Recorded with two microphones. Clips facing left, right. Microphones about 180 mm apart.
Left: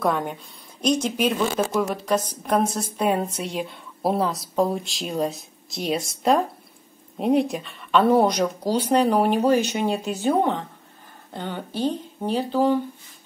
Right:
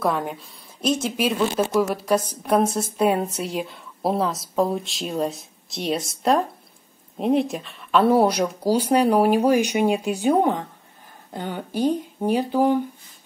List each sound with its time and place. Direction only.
0.0 s a woman's voice: centre (ahead or behind)